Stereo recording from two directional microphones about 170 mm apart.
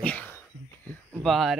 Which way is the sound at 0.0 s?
10° left (ahead or behind).